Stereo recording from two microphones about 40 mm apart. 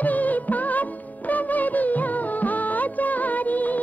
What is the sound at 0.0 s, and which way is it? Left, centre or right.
Music, left.